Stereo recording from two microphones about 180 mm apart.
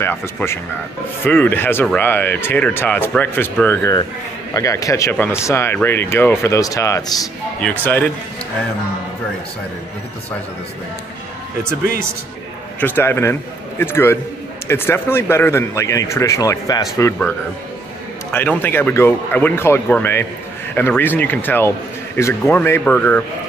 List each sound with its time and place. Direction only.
0.0 s speech: 10° left (ahead or behind)
12.8 s speech: 10° left (ahead or behind)
18.3 s speech: 10° left (ahead or behind)